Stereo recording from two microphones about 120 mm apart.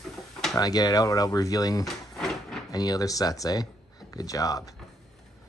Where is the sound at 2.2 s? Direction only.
5° left (ahead or behind).